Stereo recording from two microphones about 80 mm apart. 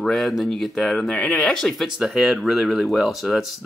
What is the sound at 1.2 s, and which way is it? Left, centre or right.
Speech, centre.